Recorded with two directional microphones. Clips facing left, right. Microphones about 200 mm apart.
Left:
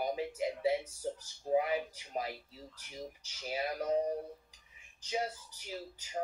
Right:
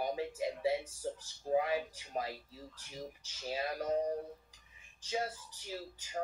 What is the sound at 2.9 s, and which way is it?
Speech, 15° left (ahead or behind).